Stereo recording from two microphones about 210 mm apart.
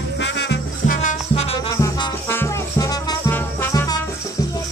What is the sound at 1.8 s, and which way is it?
Music, 15° left (ahead or behind).